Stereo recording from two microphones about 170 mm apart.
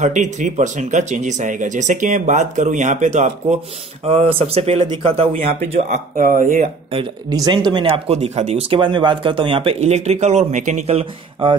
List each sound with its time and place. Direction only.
0.0 s speech: 45° right (ahead or behind)
6.1 s speech: 55° right (ahead or behind)
6.4 s speech: 40° right (ahead or behind)